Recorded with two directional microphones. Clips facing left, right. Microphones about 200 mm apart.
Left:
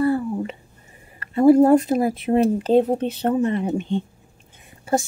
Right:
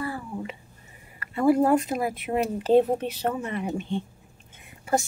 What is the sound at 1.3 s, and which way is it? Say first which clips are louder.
Speech: left 7 dB; 30° left (ahead or behind).